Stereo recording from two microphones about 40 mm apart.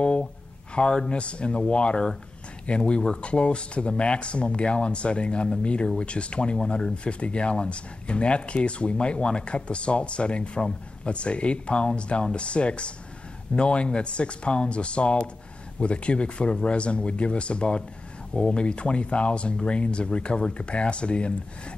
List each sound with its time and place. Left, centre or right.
0.7 s speech: left